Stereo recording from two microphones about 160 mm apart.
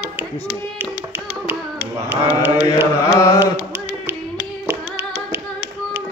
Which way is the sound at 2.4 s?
15° right (ahead or behind).